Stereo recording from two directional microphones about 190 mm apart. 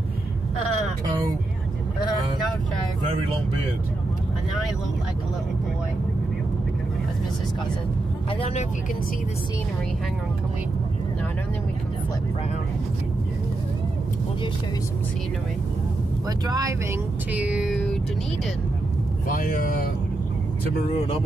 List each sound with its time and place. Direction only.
8.3 s speech: 30° left (ahead or behind)
16.3 s speech: 20° right (ahead or behind)
17.3 s a sound: 5° right (ahead or behind)
19.2 s speech: 45° left (ahead or behind)